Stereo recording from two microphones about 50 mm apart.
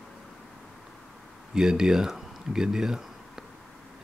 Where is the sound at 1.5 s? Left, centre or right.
Centre.